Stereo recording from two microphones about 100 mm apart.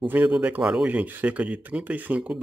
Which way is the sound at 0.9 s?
15° right (ahead or behind).